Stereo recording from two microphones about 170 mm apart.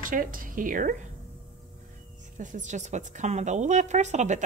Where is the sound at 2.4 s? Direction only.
50° right (ahead or behind).